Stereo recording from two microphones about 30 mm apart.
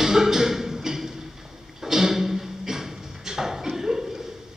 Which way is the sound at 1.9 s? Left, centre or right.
Centre.